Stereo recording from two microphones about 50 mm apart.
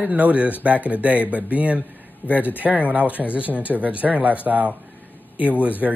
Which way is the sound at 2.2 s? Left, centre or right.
Left.